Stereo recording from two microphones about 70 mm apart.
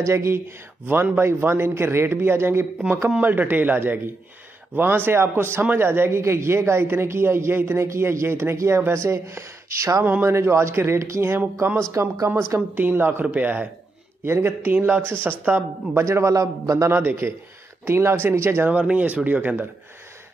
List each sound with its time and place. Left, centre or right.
0.0 s a man's voice: right
3.1 s a man's voice: right
10.2 s a man's voice: right
11.9 s speech: right
12.7 s speech: right
14.2 s a man's voice: right
16.9 s a man's voice: right
18.7 s speech: centre